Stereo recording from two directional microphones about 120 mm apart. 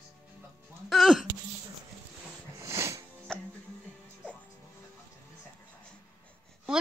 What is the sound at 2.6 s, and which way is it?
Music, 25° right (ahead or behind).